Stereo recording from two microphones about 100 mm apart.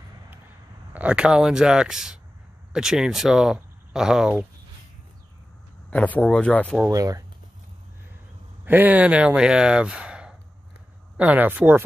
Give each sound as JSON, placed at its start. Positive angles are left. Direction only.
{"t": 0.9, "sound": "speech", "side_deg": -10}
{"t": 5.9, "sound": "speech", "side_deg": 15}
{"t": 6.9, "sound": "speech", "side_deg": -35}
{"t": 8.6, "sound": "speech", "side_deg": -20}